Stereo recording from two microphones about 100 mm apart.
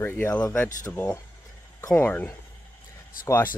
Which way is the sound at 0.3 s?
10° left (ahead or behind).